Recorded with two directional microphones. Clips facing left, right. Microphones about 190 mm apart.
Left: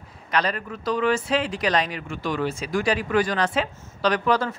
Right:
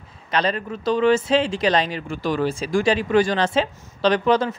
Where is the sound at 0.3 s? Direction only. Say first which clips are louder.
Right 3 dB; 25° right (ahead or behind).